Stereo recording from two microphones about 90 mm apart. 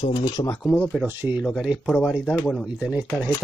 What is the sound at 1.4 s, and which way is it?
Speech, 5° right (ahead or behind).